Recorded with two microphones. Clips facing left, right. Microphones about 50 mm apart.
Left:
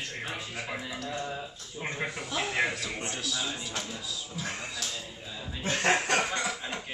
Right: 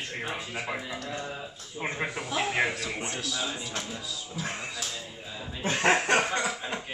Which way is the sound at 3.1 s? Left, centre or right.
Centre.